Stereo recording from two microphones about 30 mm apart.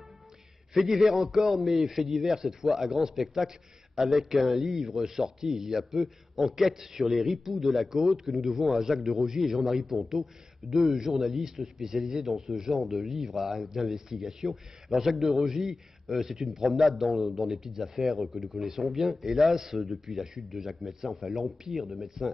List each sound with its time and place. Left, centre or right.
0.7 s a man's voice: centre
14.5 s a man's voice: centre